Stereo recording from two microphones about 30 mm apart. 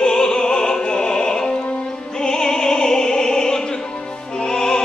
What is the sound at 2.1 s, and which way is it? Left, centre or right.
Opera, left.